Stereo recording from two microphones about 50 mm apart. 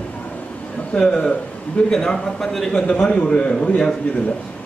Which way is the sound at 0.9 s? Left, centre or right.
Centre.